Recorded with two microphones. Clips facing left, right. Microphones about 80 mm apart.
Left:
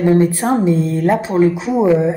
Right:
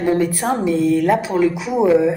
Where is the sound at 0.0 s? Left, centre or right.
Left.